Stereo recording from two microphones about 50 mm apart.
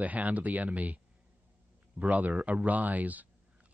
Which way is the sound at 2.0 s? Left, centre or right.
Right.